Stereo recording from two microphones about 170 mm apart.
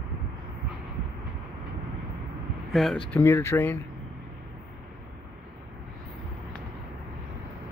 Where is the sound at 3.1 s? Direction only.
15° left (ahead or behind).